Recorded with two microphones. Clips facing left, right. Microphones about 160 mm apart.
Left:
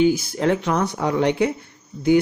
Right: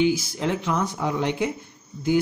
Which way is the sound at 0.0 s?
55° left (ahead or behind).